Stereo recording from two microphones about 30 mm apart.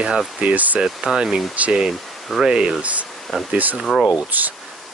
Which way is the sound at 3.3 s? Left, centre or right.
Centre.